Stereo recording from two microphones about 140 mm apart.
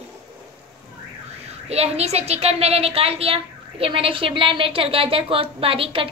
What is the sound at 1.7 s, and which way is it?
A woman's voice, 50° right (ahead or behind).